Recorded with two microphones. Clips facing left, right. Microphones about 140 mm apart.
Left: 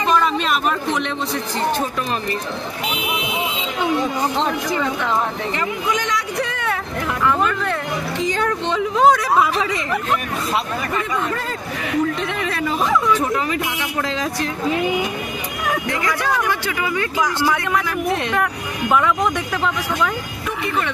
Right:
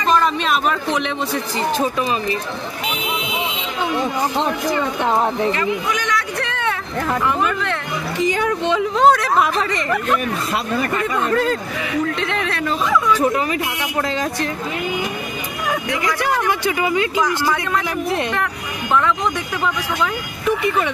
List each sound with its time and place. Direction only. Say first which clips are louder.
0.1 s a sound: right 2 dB; centre (ahead or behind)
5.5 s speech: right 2 dB; 20° left (ahead or behind)
6.4 s vehicle: right 1 dB; 5° left (ahead or behind)
8.3 s speech: right 1 dB; 10° right (ahead or behind)
9.0 s speech: even; 5° left (ahead or behind)
12.3 s speech: right 1 dB; centre (ahead or behind)
14.0 s speech: right 1 dB; centre (ahead or behind)
16.4 s speech: right 3 dB; 15° right (ahead or behind)
17.2 s speech: even; 10° left (ahead or behind)
20.4 s speech: right 5 dB; 15° right (ahead or behind)